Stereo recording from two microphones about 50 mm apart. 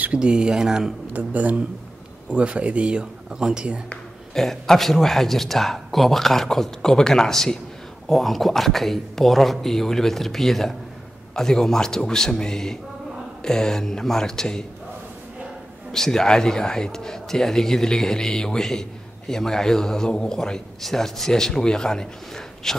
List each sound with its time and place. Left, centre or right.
0.2 s speech: centre
1.1 s speech: right
4.3 s speech: centre
15.9 s speech: centre